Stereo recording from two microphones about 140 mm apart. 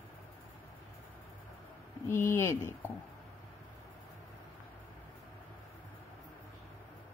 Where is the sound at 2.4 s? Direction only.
15° left (ahead or behind).